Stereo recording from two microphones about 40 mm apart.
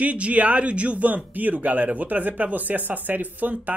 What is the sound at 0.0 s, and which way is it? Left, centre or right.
Speech, right.